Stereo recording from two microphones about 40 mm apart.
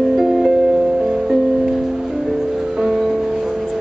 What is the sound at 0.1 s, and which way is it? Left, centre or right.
Music, centre.